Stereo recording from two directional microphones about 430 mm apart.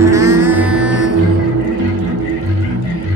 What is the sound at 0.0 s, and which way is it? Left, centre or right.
Music, centre.